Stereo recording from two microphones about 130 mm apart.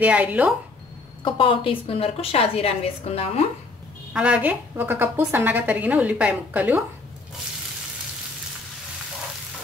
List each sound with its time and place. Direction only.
0.0 s a woman's voice: 10° right (ahead or behind)
1.2 s a woman's voice: 45° left (ahead or behind)
4.1 s a woman's voice: 10° right (ahead or behind)